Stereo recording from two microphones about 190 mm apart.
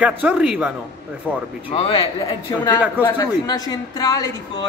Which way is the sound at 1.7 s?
30° left (ahead or behind).